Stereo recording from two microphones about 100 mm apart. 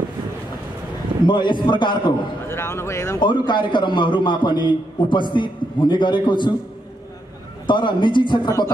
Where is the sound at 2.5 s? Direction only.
25° left (ahead or behind).